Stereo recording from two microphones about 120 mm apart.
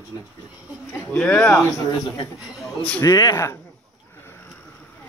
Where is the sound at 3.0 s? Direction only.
30° left (ahead or behind).